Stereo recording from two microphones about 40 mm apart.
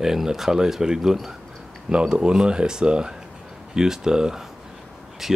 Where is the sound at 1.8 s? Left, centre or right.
Right.